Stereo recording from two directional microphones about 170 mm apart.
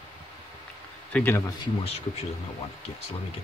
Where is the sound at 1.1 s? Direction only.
10° left (ahead or behind); by 2.2 s 35° left (ahead or behind).